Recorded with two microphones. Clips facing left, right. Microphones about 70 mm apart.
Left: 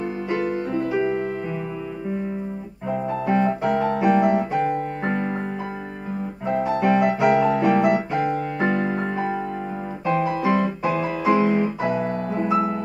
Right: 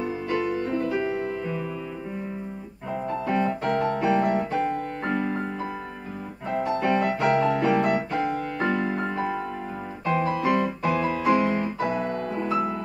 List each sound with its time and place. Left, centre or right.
0.5 s music: left
2.9 s music: centre
6.4 s piano: centre
10.0 s music: centre
12.4 s music: centre